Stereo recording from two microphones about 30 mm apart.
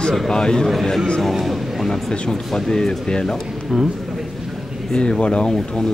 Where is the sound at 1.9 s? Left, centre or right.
Centre.